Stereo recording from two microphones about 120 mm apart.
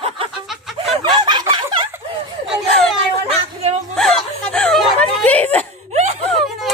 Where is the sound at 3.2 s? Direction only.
60° right (ahead or behind).